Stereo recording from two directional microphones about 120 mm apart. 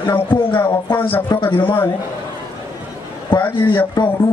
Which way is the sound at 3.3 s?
45° left (ahead or behind).